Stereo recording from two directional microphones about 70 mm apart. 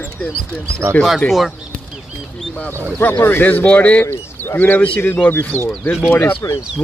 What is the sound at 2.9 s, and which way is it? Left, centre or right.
Speech, left.